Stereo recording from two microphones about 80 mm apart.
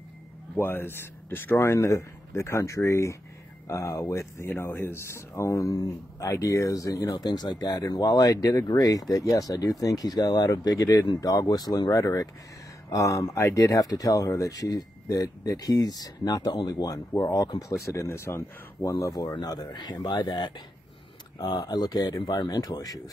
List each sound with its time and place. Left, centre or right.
0.6 s speech: left
4.4 s speech: left
5.7 s speech: left
8.0 s speech: left